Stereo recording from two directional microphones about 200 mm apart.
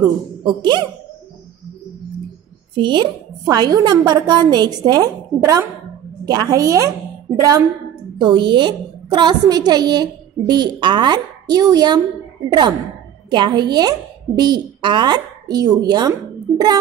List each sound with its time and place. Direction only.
0.5 s a woman's voice: 20° right (ahead or behind)
2.8 s a woman's voice: 25° right (ahead or behind)
8.2 s a woman's voice: 20° right (ahead or behind)